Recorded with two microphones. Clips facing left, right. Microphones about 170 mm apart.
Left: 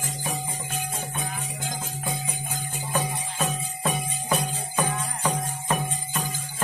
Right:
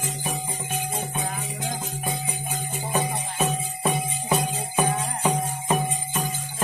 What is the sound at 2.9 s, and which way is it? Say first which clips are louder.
Music: right 2 dB; 10° right (ahead or behind).